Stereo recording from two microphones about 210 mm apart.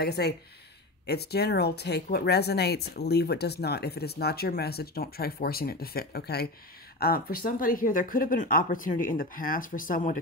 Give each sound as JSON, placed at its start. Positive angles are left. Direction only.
{"t": 0.0, "sound": "speech", "side_deg": 50}